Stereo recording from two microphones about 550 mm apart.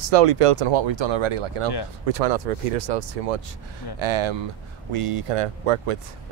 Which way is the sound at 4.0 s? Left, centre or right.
Right.